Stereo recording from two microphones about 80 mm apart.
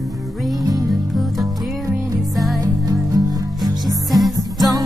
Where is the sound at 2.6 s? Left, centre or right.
Right.